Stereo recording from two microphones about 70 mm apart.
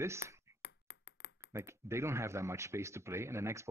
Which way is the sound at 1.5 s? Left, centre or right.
Right.